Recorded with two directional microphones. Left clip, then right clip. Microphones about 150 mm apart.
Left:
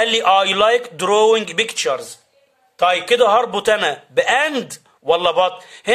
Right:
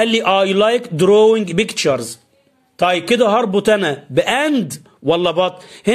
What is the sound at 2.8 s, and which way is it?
A man's voice, 30° right (ahead or behind).